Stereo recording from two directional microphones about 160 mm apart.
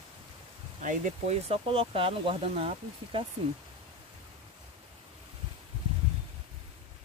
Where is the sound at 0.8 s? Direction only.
55° right (ahead or behind).